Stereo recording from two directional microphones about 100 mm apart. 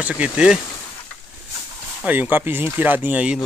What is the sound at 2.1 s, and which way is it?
Speech, 20° right (ahead or behind).